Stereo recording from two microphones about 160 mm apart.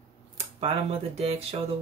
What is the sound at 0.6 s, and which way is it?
Speech, 40° right (ahead or behind).